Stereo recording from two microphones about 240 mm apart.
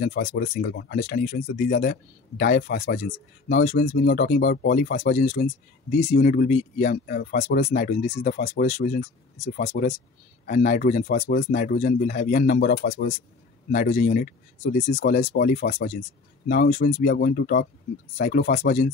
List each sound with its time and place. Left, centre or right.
0.0 s speech: left